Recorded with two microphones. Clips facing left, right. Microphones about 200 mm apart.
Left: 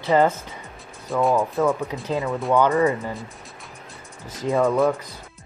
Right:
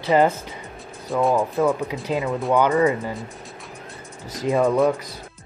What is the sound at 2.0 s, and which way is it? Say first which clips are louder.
Speech: right 1 dB; 15° right (ahead or behind).